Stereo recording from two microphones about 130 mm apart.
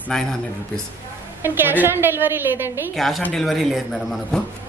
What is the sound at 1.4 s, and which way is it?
A woman's voice, 15° right (ahead or behind).